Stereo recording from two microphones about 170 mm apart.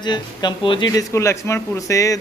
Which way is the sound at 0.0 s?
25° left (ahead or behind).